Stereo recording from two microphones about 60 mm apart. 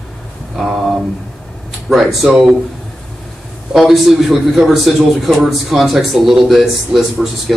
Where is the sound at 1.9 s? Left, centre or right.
Centre.